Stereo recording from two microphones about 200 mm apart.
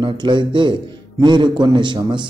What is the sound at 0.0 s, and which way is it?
A man's voice, 25° right (ahead or behind).